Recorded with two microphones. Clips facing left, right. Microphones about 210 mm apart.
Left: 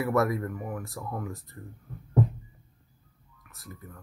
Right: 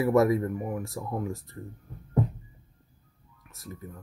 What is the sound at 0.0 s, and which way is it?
Speech, 20° right (ahead or behind).